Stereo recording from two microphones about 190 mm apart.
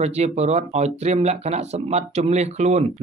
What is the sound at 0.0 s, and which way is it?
Speech, 35° right (ahead or behind).